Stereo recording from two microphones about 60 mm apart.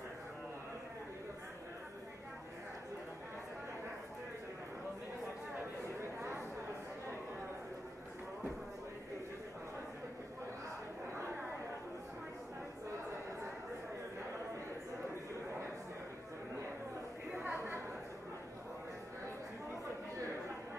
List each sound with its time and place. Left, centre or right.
5.9 s chatter: right
17.4 s chatter: right